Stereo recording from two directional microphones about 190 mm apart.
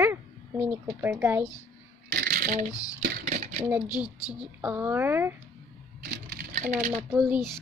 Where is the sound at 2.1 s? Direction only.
55° right (ahead or behind).